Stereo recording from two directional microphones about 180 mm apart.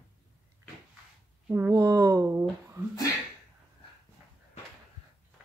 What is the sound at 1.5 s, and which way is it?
Speech, 15° right (ahead or behind).